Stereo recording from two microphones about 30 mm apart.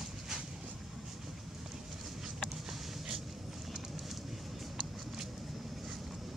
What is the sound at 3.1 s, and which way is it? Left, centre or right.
Vehicle, centre.